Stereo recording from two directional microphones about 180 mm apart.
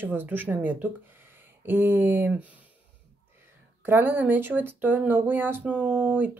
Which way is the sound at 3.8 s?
10° right (ahead or behind).